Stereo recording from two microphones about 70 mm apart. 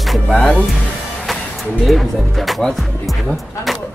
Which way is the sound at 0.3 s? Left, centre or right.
Centre.